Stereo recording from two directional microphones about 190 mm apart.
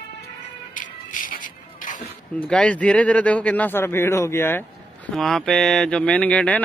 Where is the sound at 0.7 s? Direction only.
45° left (ahead or behind).